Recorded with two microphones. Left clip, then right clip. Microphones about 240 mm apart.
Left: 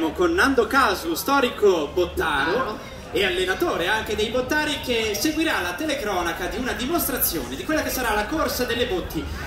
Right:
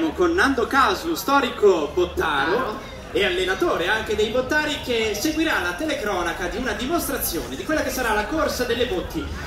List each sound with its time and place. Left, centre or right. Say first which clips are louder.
0.2 s a man's voice: left 1 dB; left